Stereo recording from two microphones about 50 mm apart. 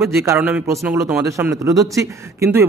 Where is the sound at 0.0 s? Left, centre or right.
Right.